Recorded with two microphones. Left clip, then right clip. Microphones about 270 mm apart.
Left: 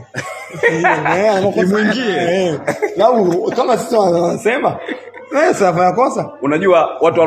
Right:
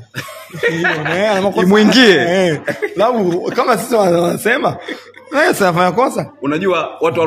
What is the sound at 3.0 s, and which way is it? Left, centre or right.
Speech, right.